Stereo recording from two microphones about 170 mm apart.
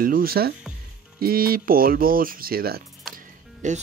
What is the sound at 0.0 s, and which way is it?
Speech, 60° right (ahead or behind).